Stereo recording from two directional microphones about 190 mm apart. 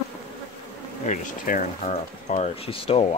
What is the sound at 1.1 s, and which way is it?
Speech, 45° left (ahead or behind).